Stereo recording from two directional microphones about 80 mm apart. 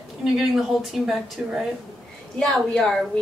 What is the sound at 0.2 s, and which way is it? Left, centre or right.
A woman's voice, centre.